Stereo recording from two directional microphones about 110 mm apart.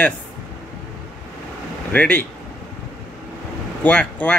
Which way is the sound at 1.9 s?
15° left (ahead or behind).